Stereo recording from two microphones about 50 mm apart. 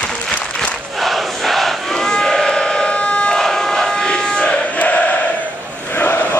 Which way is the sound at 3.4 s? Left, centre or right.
Centre.